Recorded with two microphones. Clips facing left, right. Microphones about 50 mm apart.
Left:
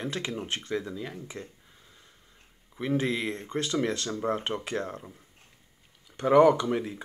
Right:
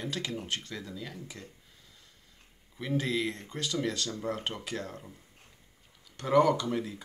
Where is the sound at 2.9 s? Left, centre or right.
Left.